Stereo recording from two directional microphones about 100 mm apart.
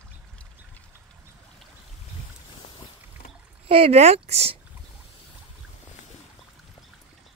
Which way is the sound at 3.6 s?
70° right (ahead or behind).